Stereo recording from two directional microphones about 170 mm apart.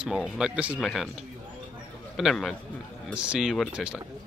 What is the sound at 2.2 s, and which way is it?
Speech, centre (ahead or behind).